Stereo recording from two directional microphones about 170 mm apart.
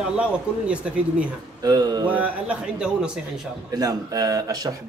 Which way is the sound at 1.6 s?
25° right (ahead or behind).